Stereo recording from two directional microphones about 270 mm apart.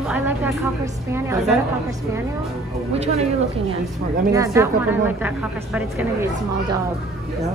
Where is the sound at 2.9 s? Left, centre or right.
Right.